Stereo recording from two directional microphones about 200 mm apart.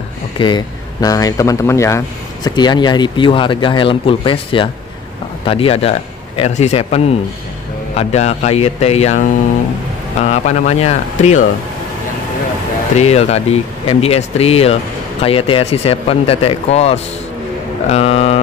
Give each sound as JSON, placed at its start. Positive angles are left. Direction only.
{"t": 0.4, "sound": "speech", "side_deg": 20}
{"t": 10.2, "sound": "speech", "side_deg": 35}
{"t": 12.9, "sound": "speech", "side_deg": 30}